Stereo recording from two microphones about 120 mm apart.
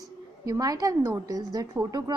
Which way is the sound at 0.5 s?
30° right (ahead or behind).